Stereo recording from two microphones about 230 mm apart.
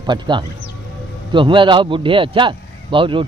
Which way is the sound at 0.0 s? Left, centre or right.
Centre.